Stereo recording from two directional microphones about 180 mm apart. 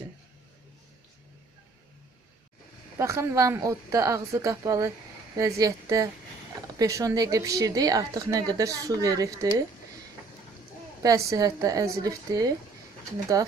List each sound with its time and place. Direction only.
3.0 s a woman's voice: 15° right (ahead or behind)
11.0 s a woman's voice: 20° right (ahead or behind)